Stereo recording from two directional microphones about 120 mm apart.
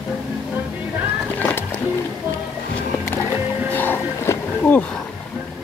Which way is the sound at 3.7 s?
15° left (ahead or behind).